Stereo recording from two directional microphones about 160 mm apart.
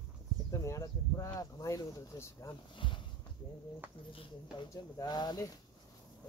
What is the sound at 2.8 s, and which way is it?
Speech, 30° left (ahead or behind).